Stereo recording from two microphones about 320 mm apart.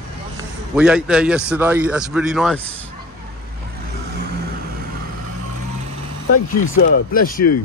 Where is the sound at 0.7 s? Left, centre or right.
Centre.